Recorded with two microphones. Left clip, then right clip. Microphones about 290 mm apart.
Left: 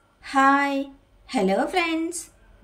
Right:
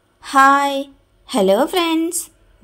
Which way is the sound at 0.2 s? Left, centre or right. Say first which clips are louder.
Right 7 dB; centre.